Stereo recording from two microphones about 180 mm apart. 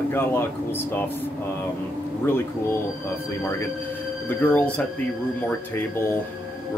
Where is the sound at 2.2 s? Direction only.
15° left (ahead or behind).